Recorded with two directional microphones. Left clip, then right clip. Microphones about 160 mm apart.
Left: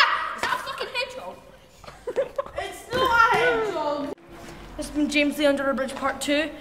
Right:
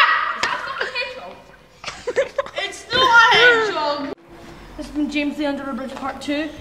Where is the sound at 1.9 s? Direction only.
15° right (ahead or behind).